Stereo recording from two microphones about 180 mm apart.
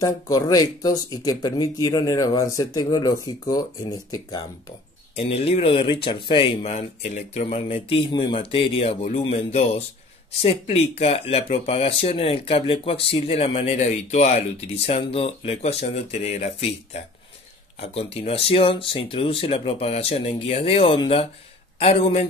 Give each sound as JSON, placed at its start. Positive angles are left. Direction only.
{"t": 0.0, "sound": "speech", "side_deg": 20}
{"t": 5.1, "sound": "speech", "side_deg": 35}